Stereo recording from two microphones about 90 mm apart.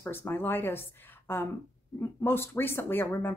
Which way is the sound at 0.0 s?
25° left (ahead or behind).